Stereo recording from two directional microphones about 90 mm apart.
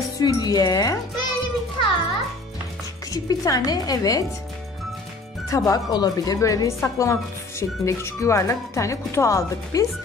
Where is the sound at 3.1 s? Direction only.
40° left (ahead or behind).